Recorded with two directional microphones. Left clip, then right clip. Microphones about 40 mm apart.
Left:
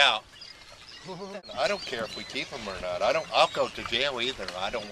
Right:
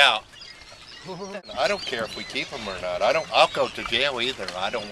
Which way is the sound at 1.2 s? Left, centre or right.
Centre.